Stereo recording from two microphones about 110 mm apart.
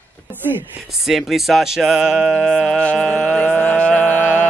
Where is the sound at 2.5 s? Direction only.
5° left (ahead or behind).